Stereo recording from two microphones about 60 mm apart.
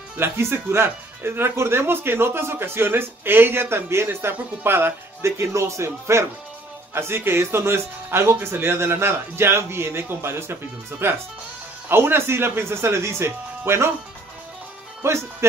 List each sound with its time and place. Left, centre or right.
0.2 s speech: right
6.9 s speech: right
15.0 s speech: right